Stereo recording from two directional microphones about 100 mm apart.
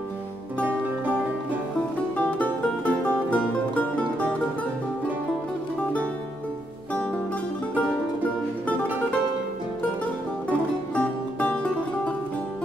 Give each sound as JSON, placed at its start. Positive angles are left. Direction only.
{"t": 2.1, "sound": "music", "side_deg": 15}
{"t": 7.7, "sound": "music", "side_deg": 15}
{"t": 11.0, "sound": "music", "side_deg": 15}